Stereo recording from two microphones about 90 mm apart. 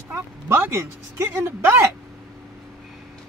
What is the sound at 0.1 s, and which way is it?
Speech, 30° right (ahead or behind).